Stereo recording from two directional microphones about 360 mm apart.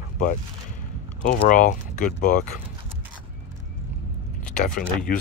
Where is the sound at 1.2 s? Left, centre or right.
Left.